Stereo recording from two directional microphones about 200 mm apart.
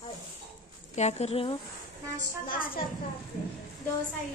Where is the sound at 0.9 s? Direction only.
35° left (ahead or behind).